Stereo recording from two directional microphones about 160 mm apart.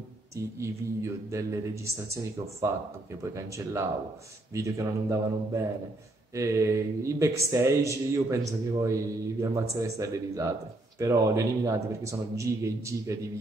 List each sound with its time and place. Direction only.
0.6 s a man's voice: 20° right (ahead or behind)